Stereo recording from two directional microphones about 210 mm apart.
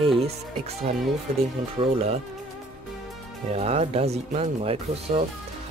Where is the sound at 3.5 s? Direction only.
30° right (ahead or behind).